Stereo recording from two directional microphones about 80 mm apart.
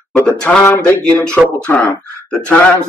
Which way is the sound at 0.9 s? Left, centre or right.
Left.